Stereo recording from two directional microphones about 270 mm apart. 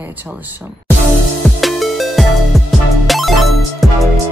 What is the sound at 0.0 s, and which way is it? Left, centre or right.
Speech, centre.